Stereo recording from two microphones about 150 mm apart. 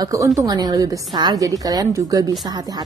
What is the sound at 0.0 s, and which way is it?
A woman's voice, 20° right (ahead or behind).